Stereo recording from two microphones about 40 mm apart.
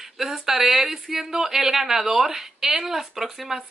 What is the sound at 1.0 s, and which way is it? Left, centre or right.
A woman's voice, centre.